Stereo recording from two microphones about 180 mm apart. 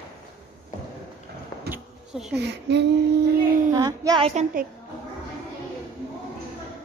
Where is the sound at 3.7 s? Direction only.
20° right (ahead or behind).